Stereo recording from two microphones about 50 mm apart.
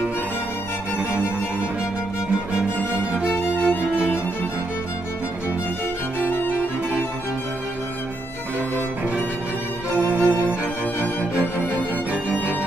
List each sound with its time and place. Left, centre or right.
3.3 s music: left
6.1 s music: left
9.9 s music: right